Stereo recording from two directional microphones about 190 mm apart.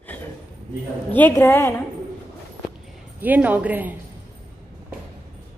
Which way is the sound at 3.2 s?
10° right (ahead or behind).